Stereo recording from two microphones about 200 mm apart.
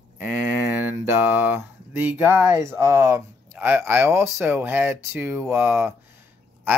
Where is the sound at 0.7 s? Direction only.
10° right (ahead or behind).